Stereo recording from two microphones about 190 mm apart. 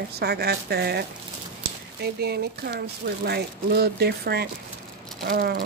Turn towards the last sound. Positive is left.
turn(degrees=-55)  # may be behind; listen again after turning